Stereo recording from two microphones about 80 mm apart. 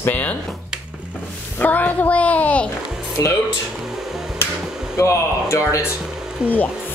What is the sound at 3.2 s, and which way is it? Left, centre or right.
Speech, left.